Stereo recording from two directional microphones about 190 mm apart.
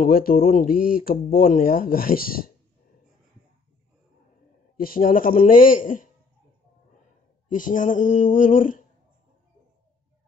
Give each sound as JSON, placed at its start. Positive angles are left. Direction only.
{"t": 0.0, "sound": "speech", "side_deg": 50}
{"t": 4.7, "sound": "speech", "side_deg": 50}
{"t": 7.5, "sound": "speech", "side_deg": 45}